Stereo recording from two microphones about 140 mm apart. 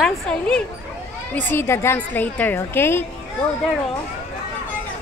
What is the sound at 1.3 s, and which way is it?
A woman's voice, 15° left (ahead or behind).